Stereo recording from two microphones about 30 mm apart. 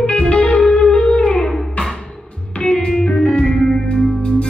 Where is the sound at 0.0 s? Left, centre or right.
Left.